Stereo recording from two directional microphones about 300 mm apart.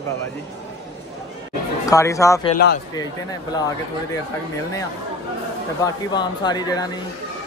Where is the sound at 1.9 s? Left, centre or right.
Centre.